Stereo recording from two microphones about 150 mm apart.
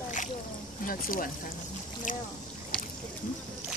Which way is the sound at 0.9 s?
70° left (ahead or behind).